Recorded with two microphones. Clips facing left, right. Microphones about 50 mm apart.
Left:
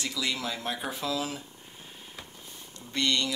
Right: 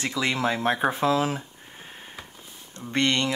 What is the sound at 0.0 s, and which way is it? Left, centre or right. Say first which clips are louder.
Speech: right 7 dB; right.